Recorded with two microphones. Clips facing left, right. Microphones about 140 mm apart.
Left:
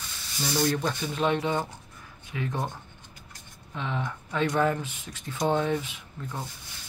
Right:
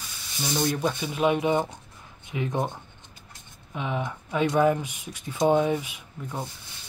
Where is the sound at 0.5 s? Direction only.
15° right (ahead or behind).